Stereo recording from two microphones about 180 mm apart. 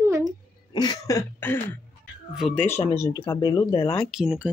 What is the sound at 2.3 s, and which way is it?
Speech, 5° left (ahead or behind).